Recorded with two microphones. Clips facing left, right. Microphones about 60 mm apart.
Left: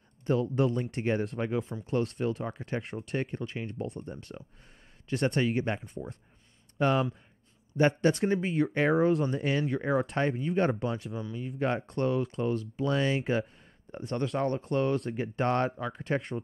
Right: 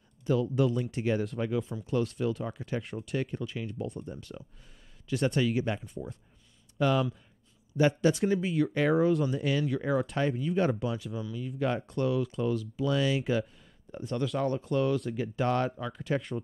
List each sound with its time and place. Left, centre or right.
0.3 s speech: left
3.8 s speech: left
6.8 s speech: left
16.0 s speech: left